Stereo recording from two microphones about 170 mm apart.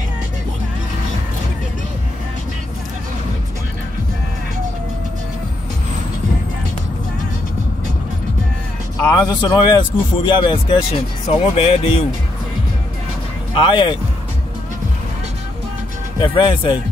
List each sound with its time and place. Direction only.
9.0 s speech: 20° left (ahead or behind); by 12.0 s 35° left (ahead or behind)
13.5 s speech: 30° left (ahead or behind)
16.2 s speech: 30° left (ahead or behind)